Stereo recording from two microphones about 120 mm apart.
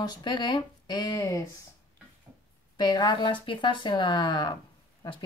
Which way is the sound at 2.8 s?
35° left (ahead or behind).